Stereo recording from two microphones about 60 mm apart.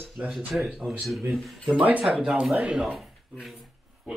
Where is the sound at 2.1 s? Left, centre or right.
Centre.